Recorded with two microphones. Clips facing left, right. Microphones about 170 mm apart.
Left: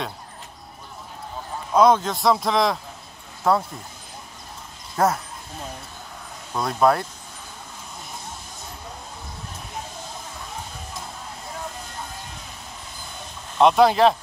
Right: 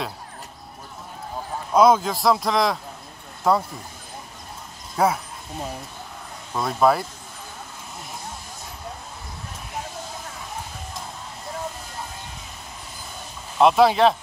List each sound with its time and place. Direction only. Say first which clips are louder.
1.7 s a man's voice: even; 5° right (ahead or behind)
4.9 s a man's voice: even; 5° right (ahead or behind)
13.6 s a man's voice: even; centre (ahead or behind)